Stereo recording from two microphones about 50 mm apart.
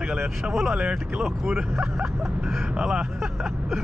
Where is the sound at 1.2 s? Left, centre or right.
Centre.